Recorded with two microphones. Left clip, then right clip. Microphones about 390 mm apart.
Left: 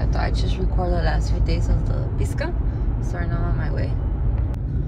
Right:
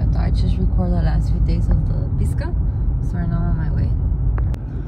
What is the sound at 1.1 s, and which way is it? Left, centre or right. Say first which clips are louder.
Speech: left 1 dB; right.